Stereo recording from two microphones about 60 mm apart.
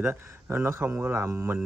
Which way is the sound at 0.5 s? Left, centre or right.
Right.